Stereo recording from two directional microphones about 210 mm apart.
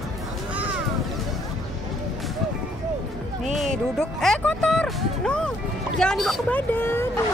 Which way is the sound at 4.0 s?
5° left (ahead or behind).